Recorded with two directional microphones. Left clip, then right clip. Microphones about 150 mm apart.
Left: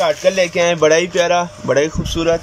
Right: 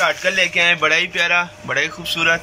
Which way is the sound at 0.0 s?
25° left (ahead or behind).